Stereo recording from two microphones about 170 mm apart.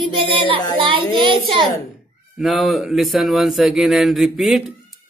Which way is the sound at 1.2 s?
30° right (ahead or behind).